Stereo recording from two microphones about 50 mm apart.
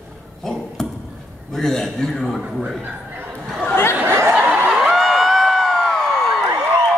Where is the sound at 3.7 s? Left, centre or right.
Left.